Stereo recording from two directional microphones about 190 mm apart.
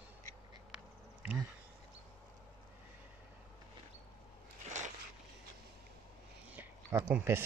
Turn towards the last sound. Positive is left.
turn(degrees=-10)  # may be behind; listen again after turning